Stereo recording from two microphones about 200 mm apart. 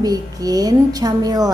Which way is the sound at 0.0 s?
20° right (ahead or behind).